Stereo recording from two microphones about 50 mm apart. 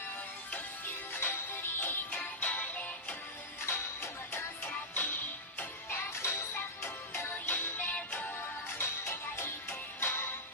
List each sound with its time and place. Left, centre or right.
0.5 s music: left
3.6 s music: left
4.6 s music: left
5.9 s music: left
6.3 s music: left
8.2 s music: left
9.4 s music: left